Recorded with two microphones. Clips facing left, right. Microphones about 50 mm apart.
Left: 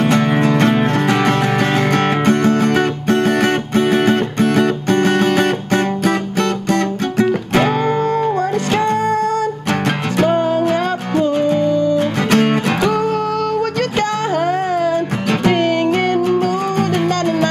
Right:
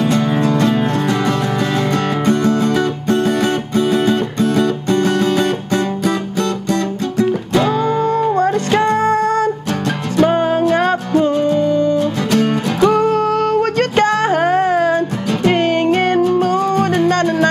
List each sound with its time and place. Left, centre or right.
0.0 s music: left
8.4 s music: right
11.3 s music: left
11.6 s music: right
12.0 s music: left
12.8 s music: right
16.5 s music: left